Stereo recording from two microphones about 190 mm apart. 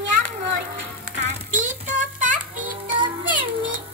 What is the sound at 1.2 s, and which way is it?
Music, 40° right (ahead or behind).